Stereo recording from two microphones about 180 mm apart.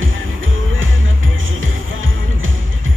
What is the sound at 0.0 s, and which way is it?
Music, 90° right.